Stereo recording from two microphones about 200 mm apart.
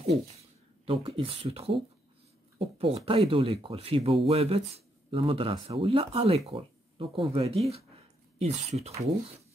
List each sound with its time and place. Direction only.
0.8 s speech: 25° right (ahead or behind)